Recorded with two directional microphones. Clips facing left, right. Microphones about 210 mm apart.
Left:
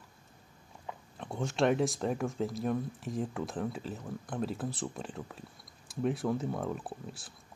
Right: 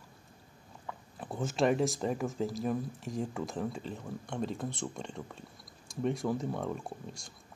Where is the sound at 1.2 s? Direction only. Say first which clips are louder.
Even; centre (ahead or behind).